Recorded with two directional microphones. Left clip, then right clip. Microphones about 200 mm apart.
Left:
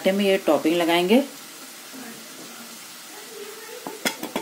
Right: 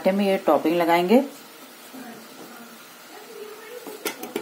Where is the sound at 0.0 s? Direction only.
20° left (ahead or behind).